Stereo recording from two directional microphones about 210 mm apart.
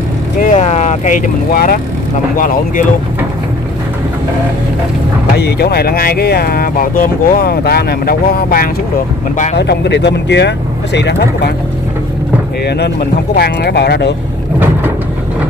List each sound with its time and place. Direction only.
0.4 s speech: 35° left (ahead or behind)
5.4 s speech: 50° left (ahead or behind)
12.6 s speech: 50° left (ahead or behind)